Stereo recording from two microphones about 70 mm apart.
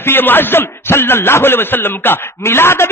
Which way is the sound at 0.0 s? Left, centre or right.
Left.